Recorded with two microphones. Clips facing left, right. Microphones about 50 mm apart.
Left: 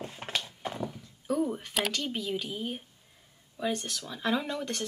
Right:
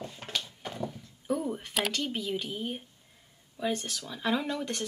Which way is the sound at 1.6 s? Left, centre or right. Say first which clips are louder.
Even; centre.